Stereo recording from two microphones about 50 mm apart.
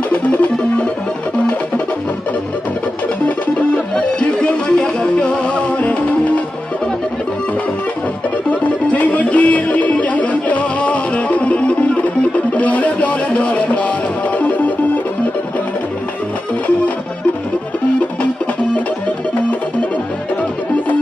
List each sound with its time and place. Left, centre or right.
0.1 s music: left
3.9 s music: centre
8.5 s music: left